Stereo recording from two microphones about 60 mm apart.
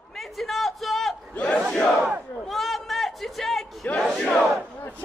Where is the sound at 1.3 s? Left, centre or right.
Left.